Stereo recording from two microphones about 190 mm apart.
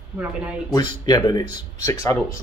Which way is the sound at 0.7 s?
20° left (ahead or behind).